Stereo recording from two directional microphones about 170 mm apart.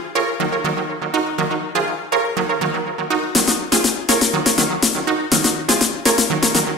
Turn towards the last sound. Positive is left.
turn(degrees=0)  # may be behind; listen again after turning